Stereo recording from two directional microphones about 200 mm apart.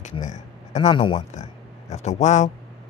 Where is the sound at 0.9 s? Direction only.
25° left (ahead or behind).